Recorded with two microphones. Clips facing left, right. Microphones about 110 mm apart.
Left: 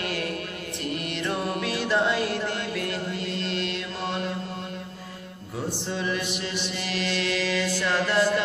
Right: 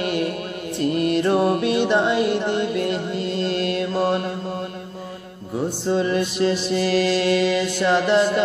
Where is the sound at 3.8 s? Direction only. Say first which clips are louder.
Right 10 dB; 35° right (ahead or behind).